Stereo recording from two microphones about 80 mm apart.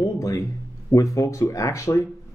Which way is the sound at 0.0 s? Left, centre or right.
Left.